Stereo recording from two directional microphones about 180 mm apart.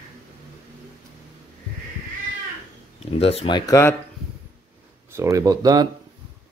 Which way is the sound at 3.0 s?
35° left (ahead or behind).